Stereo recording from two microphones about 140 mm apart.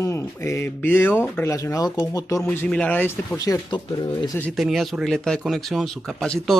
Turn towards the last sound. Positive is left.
turn(degrees=5)  # may be behind; listen again after turning